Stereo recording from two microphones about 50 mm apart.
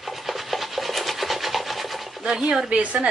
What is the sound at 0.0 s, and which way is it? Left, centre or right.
Rub, centre.